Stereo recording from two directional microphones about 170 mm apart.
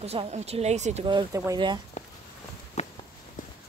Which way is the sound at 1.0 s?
25° right (ahead or behind).